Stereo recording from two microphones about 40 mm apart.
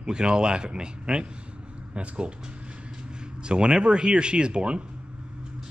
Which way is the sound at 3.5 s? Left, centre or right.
Right.